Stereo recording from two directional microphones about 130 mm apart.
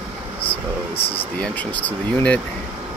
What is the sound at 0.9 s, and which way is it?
Speech, 45° left (ahead or behind).